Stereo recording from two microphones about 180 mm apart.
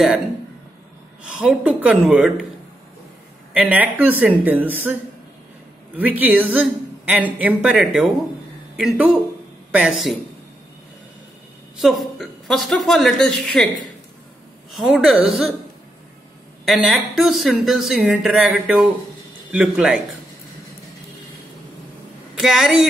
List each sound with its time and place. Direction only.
1.2 s speech: 5° right (ahead or behind)
3.5 s a woman's voice: 10° right (ahead or behind)
5.9 s a woman's voice: 10° right (ahead or behind)
11.7 s speech: centre (ahead or behind)
14.7 s speech: centre (ahead or behind)
16.6 s speech: centre (ahead or behind)
22.3 s a woman's voice: centre (ahead or behind)